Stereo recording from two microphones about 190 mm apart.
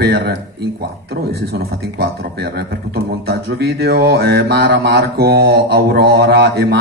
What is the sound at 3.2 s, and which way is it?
Mantra, 60° right (ahead or behind).